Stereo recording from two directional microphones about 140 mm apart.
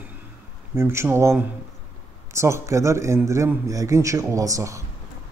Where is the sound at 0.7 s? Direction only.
20° right (ahead or behind).